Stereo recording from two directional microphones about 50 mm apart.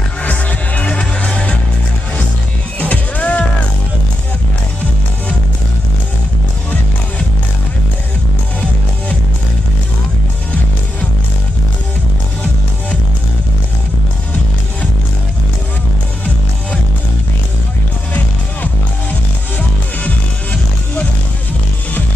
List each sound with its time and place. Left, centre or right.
0.2 s music: left
2.8 s music: left